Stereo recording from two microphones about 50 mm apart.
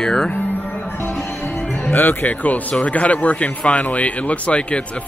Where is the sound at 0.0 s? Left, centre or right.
Centre.